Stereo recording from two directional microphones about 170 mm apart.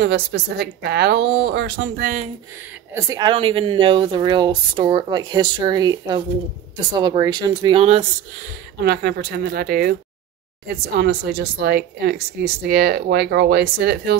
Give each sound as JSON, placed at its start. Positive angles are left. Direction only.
{"t": 0.0, "sound": "a woman's voice", "side_deg": -70}
{"t": 2.9, "sound": "a woman's voice", "side_deg": -20}
{"t": 8.8, "sound": "a woman's voice", "side_deg": -70}